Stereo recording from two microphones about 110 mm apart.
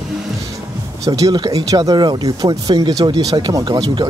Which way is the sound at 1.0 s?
30° right (ahead or behind).